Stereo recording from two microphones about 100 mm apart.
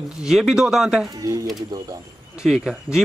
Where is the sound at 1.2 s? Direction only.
30° right (ahead or behind).